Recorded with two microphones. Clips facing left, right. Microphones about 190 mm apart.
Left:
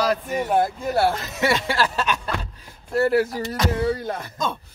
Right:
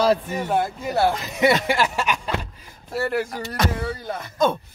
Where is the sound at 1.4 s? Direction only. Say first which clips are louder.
Right 3 dB; 15° right (ahead or behind).